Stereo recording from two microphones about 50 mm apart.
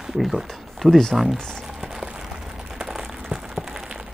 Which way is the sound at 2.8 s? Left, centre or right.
Centre.